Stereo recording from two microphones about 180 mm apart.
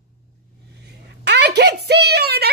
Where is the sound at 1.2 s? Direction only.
70° right (ahead or behind).